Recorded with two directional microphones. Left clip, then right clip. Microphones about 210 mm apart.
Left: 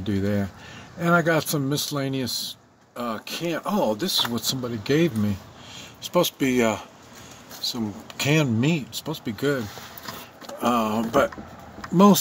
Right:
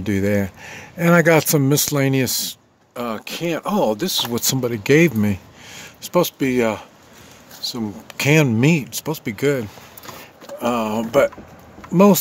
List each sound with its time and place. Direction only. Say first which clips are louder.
0.0 s speech: right 6 dB; 35° right (ahead or behind)
6.4 s speech: right 3 dB; 20° right (ahead or behind)
7.7 s speech: right 4 dB; 30° right (ahead or behind)
10.6 s speech: right 2 dB; 20° right (ahead or behind)